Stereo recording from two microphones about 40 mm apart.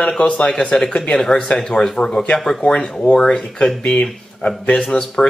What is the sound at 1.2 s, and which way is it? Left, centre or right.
Speech, centre.